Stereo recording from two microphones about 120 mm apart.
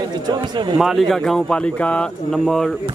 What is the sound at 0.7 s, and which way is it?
Speech, centre (ahead or behind).